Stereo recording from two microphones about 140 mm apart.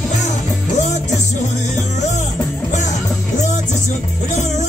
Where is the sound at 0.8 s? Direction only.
55° left (ahead or behind).